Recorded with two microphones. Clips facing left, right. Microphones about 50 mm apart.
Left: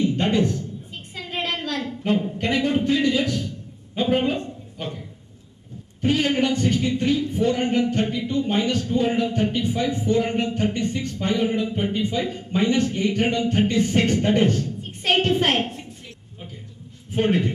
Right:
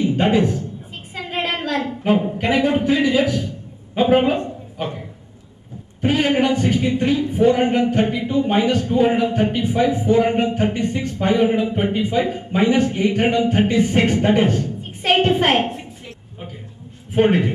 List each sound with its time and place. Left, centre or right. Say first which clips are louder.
0.1 s a man's voice: right 4 dB; centre
1.1 s a sound: right 4 dB; centre
2.3 s a man's voice: right 4 dB; centre
5.9 s speech: right 3 dB; centre
8.3 s a woman's voice: right 5 dB; centre
17.1 s speech: right 5 dB; centre